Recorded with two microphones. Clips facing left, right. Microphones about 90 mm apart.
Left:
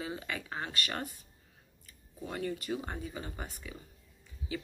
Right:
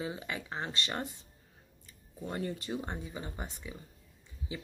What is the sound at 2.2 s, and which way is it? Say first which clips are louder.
Speech: even; 25° right (ahead or behind).